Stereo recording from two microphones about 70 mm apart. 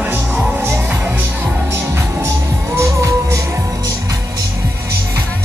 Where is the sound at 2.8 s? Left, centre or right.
Right.